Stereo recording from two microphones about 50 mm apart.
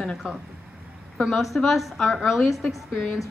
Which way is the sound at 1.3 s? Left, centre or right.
Centre.